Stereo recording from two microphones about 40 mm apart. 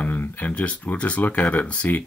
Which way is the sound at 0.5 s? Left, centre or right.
Left.